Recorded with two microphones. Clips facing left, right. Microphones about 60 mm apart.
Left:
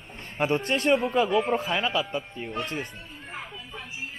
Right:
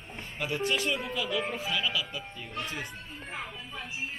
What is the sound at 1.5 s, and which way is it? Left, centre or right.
Speech, left.